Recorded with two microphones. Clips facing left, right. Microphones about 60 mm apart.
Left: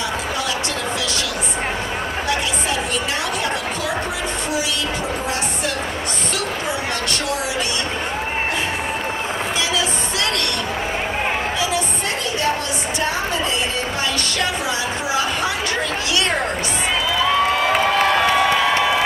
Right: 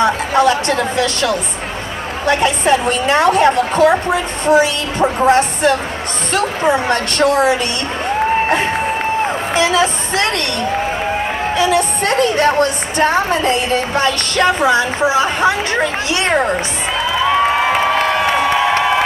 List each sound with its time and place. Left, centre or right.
0.0 s a woman's voice: right
9.6 s a woman's voice: right
11.5 s a woman's voice: right
15.0 s speech: right